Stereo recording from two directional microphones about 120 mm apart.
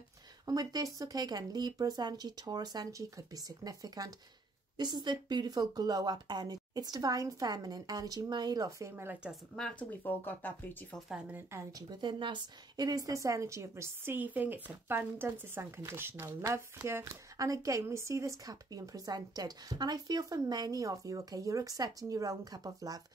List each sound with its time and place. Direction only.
0.5 s speech: 30° right (ahead or behind)
9.2 s a woman's voice: centre (ahead or behind)
9.8 s speech: 15° left (ahead or behind)
11.5 s a woman's voice: 20° right (ahead or behind)
11.9 s a woman's voice: 40° right (ahead or behind)